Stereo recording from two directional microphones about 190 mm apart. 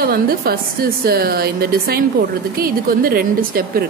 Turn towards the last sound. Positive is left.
turn(degrees=-50)  # may be behind; listen again after turning